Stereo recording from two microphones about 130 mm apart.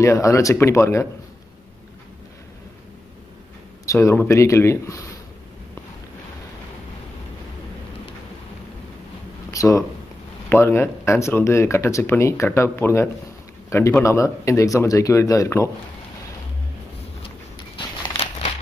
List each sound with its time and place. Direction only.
0.0 s speech: 25° left (ahead or behind)
3.8 s speech: 25° left (ahead or behind)
9.5 s a sound: 25° left (ahead or behind)
10.5 s a man's voice: 20° left (ahead or behind)